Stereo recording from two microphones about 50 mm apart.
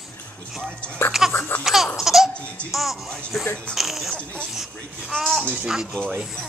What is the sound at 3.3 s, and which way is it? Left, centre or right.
Speech, centre.